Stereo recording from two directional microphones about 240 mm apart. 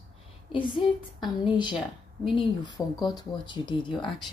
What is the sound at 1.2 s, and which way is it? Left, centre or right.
Speech, centre.